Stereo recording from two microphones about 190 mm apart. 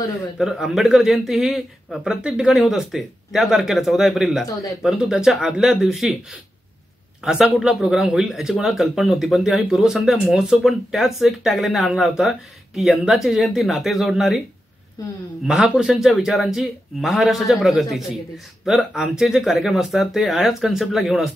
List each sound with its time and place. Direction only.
0.4 s speech: centre (ahead or behind)
7.2 s speech: 5° right (ahead or behind)
15.4 s speech: 5° right (ahead or behind)